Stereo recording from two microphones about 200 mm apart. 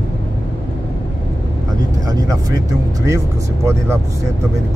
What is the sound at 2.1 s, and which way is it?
Music, 20° right (ahead or behind).